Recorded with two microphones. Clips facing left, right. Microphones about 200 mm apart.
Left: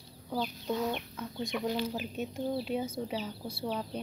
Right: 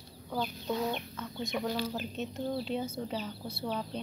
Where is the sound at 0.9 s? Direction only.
10° left (ahead or behind).